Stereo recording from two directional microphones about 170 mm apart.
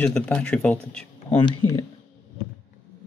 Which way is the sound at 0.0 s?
5° left (ahead or behind).